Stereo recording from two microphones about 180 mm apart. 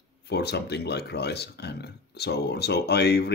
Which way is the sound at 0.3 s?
65° left (ahead or behind).